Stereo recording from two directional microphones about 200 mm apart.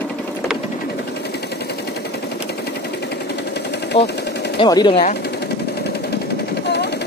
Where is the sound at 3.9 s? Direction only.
30° left (ahead or behind).